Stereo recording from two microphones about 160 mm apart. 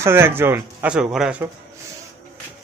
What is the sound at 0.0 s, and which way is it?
Speech, 15° right (ahead or behind).